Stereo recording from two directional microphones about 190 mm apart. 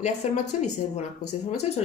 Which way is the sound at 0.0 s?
40° left (ahead or behind).